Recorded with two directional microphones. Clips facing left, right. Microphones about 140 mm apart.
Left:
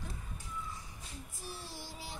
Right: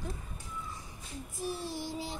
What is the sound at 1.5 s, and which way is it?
Speech, 20° right (ahead or behind).